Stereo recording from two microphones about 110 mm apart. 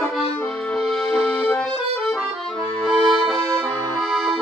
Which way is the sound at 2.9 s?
Centre (ahead or behind).